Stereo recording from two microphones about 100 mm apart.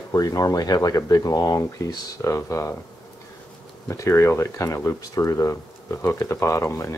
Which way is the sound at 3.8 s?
30° left (ahead or behind).